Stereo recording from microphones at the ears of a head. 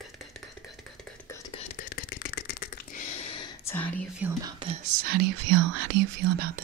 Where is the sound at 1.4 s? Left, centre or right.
Left.